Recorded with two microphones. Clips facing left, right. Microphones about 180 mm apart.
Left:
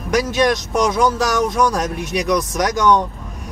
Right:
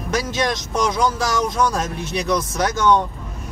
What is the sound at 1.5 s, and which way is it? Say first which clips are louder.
A man's voice: left 3 dB; 15° left (ahead or behind).